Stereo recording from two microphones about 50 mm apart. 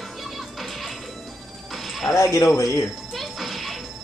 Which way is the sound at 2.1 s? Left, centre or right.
Left.